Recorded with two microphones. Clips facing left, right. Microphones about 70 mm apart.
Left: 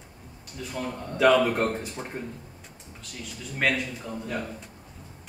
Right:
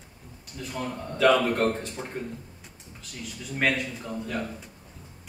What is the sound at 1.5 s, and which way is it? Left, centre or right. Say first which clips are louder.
Speech: right 1 dB; centre.